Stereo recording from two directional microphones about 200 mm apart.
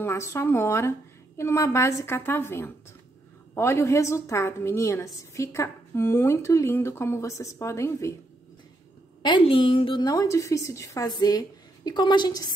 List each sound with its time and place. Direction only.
0.0 s a woman's voice: 15° left (ahead or behind)
9.2 s a woman's voice: 25° left (ahead or behind)